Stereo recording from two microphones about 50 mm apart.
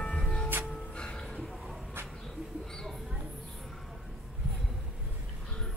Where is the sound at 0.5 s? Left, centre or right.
Right.